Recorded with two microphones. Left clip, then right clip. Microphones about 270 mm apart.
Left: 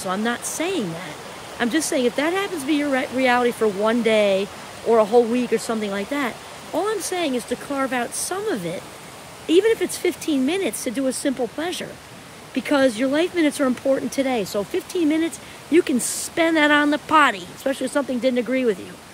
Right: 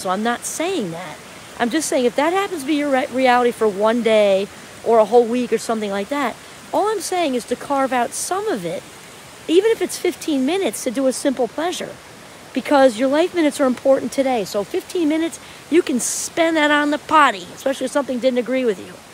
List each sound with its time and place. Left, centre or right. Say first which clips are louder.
0.0 s speech: right 4 dB; centre